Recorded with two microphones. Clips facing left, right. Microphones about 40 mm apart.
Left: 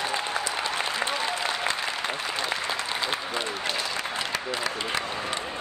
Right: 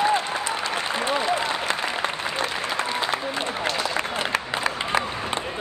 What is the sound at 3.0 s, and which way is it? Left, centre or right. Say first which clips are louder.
Applause: right 3 dB; right.